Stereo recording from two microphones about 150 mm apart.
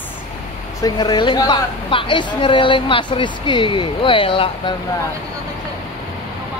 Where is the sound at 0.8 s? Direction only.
30° left (ahead or behind).